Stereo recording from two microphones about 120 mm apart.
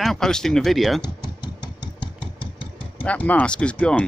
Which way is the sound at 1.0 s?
40° left (ahead or behind).